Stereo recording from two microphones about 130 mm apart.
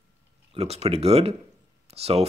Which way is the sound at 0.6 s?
50° right (ahead or behind).